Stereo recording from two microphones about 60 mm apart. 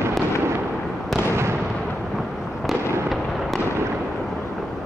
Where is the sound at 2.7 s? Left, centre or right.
Centre.